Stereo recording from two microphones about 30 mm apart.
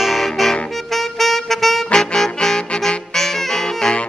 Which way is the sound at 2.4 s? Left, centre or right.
Left.